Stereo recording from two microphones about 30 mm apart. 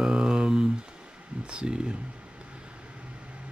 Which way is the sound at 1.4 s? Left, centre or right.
Right.